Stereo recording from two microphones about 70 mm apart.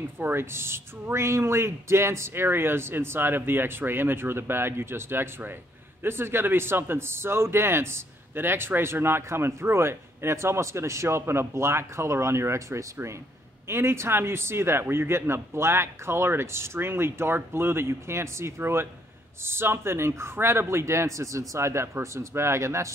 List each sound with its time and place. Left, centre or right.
0.2 s speech: right